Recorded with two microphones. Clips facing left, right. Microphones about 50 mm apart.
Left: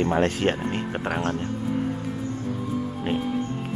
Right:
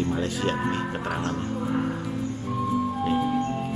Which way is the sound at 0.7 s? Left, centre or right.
Left.